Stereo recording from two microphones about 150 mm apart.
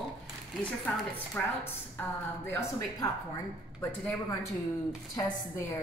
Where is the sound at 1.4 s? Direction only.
10° left (ahead or behind).